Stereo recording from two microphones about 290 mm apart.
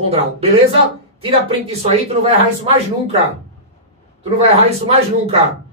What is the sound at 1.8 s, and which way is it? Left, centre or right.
Speech, right.